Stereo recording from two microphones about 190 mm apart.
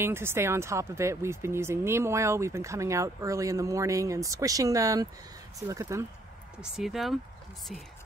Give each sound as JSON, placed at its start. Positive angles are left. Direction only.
{"t": 0.0, "sound": "speech", "side_deg": -10}
{"t": 6.6, "sound": "speech", "side_deg": 0}